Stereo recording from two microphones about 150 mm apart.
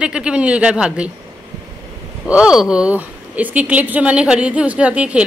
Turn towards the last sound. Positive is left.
turn(degrees=-10)  # may be behind; listen again after turning